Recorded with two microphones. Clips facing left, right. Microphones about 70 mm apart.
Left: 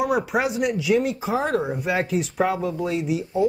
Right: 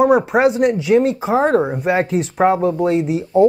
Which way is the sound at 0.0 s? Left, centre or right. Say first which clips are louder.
Right 9 dB; right.